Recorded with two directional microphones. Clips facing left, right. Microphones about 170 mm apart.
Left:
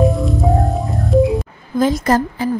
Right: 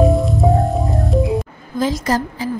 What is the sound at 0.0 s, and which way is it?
Music, centre (ahead or behind).